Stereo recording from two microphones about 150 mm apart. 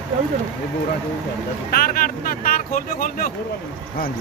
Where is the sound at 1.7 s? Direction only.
75° left (ahead or behind).